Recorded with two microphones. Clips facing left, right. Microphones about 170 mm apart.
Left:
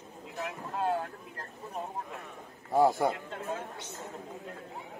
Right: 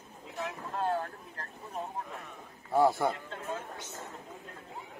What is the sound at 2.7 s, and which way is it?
Speech, 15° left (ahead or behind).